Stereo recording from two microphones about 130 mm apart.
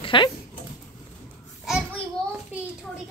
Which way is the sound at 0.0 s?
40° left (ahead or behind).